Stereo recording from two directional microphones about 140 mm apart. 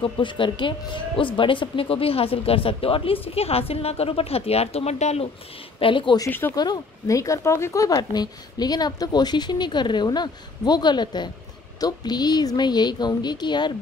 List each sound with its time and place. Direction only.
0.0 s speech: 35° left (ahead or behind)
5.8 s a woman's voice: 35° left (ahead or behind)
6.2 s speech: 15° left (ahead or behind)
6.5 s a woman's voice: 30° left (ahead or behind)